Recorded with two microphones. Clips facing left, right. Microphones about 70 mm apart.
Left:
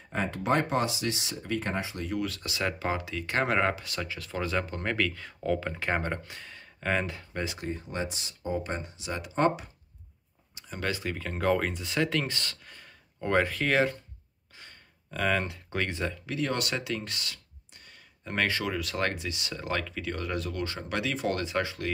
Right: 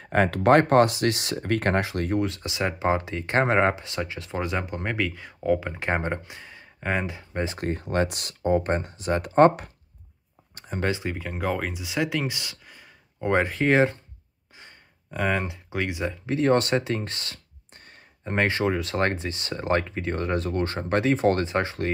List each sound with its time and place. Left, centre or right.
0.0 s speech: right
2.2 s speech: right
7.5 s speech: right
10.5 s a sound: right
10.8 s speech: right
13.3 s speech: right
14.6 s a sound: centre
16.3 s speech: right